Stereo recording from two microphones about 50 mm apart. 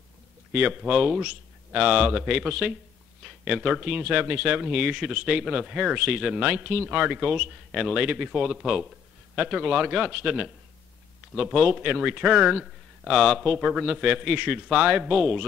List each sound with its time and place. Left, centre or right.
0.5 s speech: centre
6.5 s a man's voice: right; by 8.8 s centre
9.3 s a man's voice: right
11.5 s speech: right; by 13.8 s centre
13.8 s a man's voice: centre